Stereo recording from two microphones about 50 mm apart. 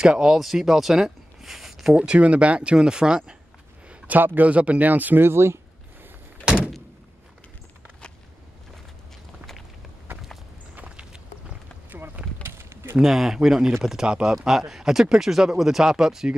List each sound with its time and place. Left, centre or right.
0.0 s speech: centre
2.0 s speech: right
4.2 s speech: right
4.5 s speech: right
5.2 s speech: right
6.4 s door: centre
12.4 s a sound: right
13.0 s speech: centre